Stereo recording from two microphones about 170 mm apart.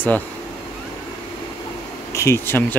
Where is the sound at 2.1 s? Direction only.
15° left (ahead or behind).